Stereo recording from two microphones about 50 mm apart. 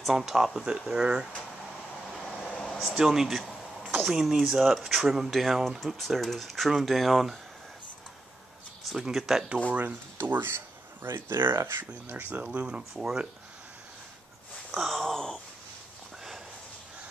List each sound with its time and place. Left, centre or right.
0.1 s speech: centre
2.0 s vehicle: centre
2.5 s air conditioning: centre
2.8 s speech: centre
9.1 s speech: centre
9.7 s speech: right
10.2 s speech: right
12.2 s speech: right; by 13.3 s centre
14.7 s wail: centre